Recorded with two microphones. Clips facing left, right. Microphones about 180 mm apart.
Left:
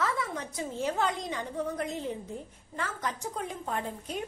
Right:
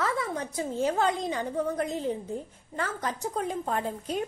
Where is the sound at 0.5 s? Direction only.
35° right (ahead or behind).